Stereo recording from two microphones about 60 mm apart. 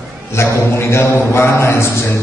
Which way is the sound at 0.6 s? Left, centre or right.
Left.